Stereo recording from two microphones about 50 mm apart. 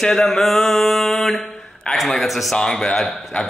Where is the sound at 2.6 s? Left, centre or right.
Centre.